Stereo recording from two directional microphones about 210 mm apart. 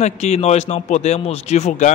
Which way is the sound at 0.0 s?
30° left (ahead or behind).